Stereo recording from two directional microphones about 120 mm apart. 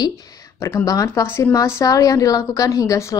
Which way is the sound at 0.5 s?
25° left (ahead or behind).